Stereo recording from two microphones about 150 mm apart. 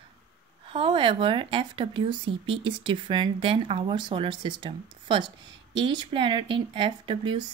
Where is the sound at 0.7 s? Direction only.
35° right (ahead or behind).